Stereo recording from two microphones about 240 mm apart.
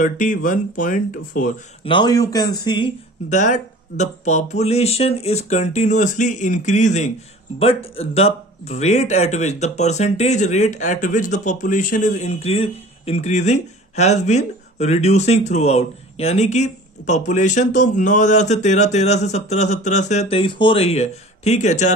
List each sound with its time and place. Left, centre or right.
0.0 s speech: left
1.9 s speech: centre
3.3 s speech: left